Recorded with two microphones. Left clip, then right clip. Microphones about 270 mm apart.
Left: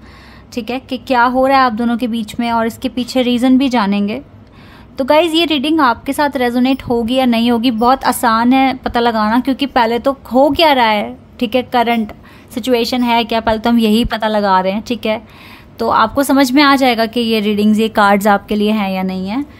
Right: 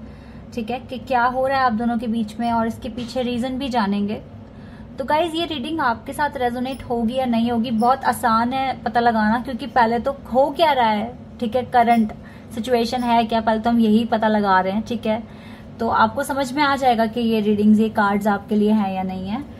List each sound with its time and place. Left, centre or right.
1.2 s a woman's voice: left
15.8 s a woman's voice: left
16.3 s a woman's voice: left
16.6 s a woman's voice: left
18.9 s a woman's voice: left